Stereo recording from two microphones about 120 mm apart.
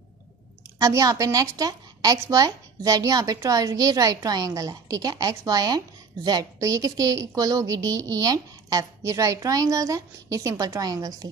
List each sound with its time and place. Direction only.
0.7 s a woman's voice: 30° right (ahead or behind)